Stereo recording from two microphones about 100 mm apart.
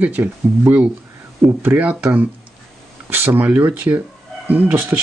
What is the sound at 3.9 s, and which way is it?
Speech, 35° right (ahead or behind).